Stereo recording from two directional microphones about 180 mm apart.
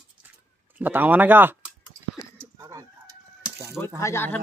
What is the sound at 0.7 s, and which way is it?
Speech, 10° right (ahead or behind).